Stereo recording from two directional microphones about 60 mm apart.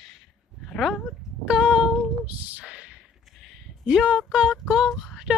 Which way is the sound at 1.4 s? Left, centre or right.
Centre.